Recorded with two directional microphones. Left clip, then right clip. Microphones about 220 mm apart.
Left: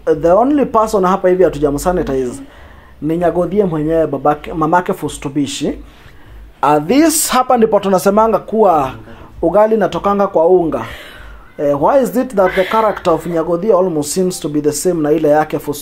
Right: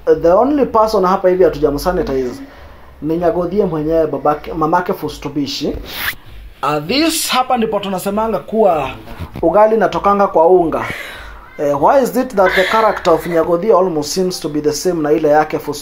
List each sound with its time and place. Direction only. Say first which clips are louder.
0.0 s speech: even; 45° left (ahead or behind)
7.1 s speech: left 2 dB; 40° left (ahead or behind)